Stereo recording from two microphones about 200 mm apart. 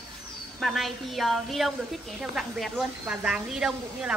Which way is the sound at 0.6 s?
Centre (ahead or behind).